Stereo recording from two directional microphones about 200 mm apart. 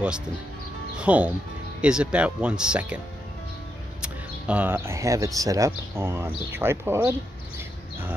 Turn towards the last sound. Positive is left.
turn(degrees=-10)  # may be behind; listen again after turning